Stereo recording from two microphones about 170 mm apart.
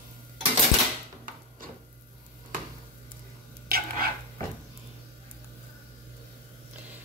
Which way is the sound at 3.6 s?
60° right (ahead or behind).